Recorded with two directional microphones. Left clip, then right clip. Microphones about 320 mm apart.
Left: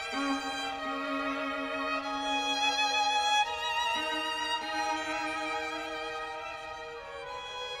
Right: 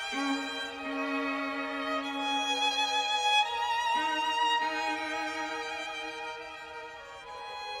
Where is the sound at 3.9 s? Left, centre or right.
Right.